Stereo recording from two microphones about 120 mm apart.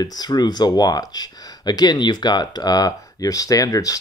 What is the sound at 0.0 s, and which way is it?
Speech, 35° left (ahead or behind).